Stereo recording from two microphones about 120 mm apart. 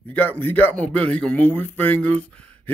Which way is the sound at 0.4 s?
15° left (ahead or behind).